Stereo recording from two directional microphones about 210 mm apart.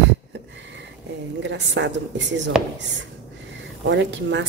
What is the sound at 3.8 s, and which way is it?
Speech, 60° right (ahead or behind).